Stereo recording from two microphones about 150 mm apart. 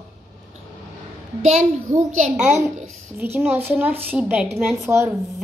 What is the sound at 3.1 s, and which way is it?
A woman's voice, 15° right (ahead or behind).